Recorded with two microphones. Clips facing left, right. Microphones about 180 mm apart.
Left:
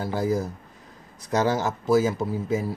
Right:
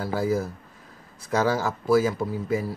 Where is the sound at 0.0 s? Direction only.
20° left (ahead or behind).